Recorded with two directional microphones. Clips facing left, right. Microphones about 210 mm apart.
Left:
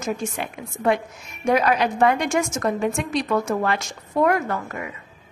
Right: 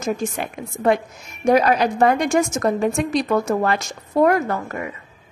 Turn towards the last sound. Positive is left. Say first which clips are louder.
# right 3 dB
turn(degrees=-40)  # may be behind; listen again after turning